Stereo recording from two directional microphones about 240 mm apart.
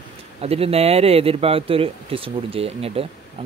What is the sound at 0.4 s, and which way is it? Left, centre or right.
A man's voice, right.